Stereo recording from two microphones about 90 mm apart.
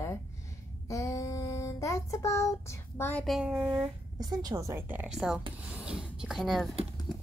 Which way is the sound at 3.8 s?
45° right (ahead or behind).